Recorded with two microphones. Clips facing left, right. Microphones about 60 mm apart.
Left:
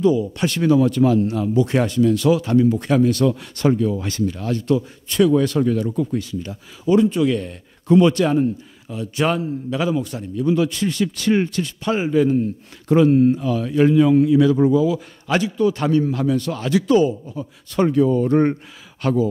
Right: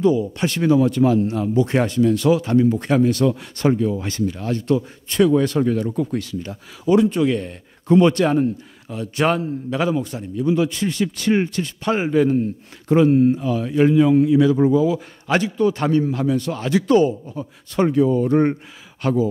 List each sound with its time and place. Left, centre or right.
0.0 s speech: right
6.9 s a man's voice: right
7.2 s a man's voice: right
10.1 s speech: centre
11.8 s a man's voice: right
12.8 s speech: right
14.7 s speech: right
16.0 s speech: right
16.8 s a man's voice: right
17.6 s speech: right